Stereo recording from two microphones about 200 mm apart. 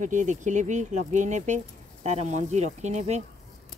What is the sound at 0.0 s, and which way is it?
Speech, 40° right (ahead or behind).